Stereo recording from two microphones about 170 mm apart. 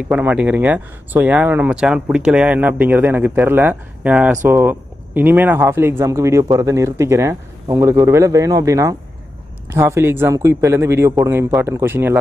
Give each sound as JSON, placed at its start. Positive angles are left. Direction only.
{"t": 0.1, "sound": "speech", "side_deg": -10}